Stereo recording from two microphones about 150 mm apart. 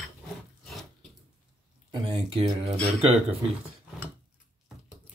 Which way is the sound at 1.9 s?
30° right (ahead or behind).